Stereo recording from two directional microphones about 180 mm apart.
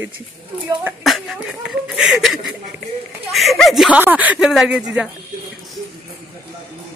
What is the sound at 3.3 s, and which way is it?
Speech, centre (ahead or behind).